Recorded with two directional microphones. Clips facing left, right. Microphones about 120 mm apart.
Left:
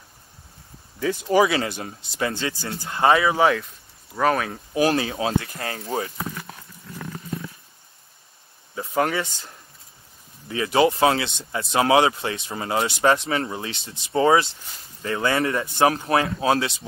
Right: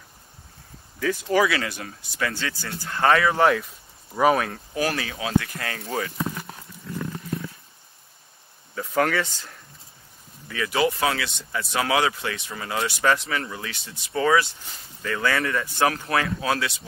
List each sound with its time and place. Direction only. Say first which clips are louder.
0.9 s speech: left 2 dB; 25° left (ahead or behind); by 4.5 s 5° right (ahead or behind)
4.7 s speech: left 6 dB; 25° left (ahead or behind)
8.7 s speech: even; 20° left (ahead or behind)